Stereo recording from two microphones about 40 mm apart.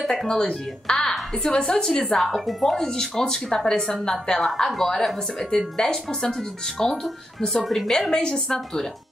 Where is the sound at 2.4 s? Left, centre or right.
Centre.